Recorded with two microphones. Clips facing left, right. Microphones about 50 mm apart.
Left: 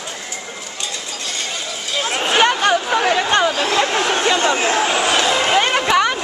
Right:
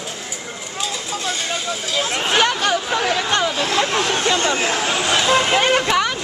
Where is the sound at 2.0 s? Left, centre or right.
Centre.